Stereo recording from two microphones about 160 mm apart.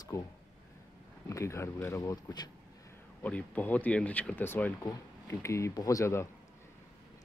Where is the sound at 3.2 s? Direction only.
10° left (ahead or behind).